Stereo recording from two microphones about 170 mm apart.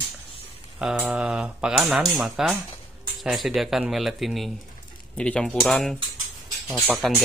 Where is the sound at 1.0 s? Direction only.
5° right (ahead or behind).